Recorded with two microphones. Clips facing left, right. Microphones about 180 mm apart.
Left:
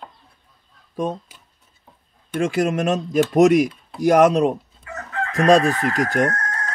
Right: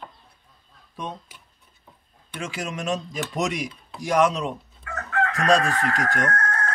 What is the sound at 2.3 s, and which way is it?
Speech, 50° left (ahead or behind).